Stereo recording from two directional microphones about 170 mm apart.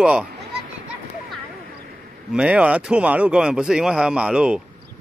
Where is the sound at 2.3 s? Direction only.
5° right (ahead or behind).